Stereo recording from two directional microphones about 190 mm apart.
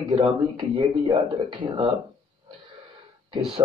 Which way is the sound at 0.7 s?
25° right (ahead or behind).